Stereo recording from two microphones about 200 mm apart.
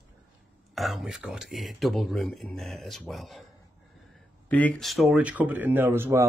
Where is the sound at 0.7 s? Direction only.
Centre (ahead or behind).